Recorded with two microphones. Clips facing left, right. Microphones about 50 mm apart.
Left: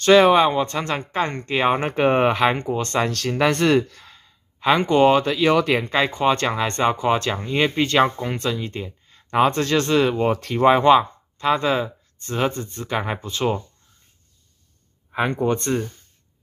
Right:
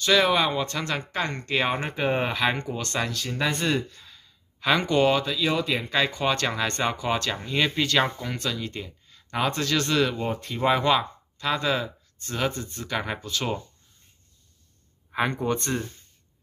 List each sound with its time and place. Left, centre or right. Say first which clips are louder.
0.0 s speech: left 8 dB; left
2.0 s speech: left 8 dB; left
3.1 s speech: left 7 dB; left
4.0 s sigh: left 3 dB; left
4.6 s speech: left 5 dB; left
5.2 s speech: left 7 dB; left
5.9 s speech: left 5 dB; left
15.4 s speech: left 7 dB; left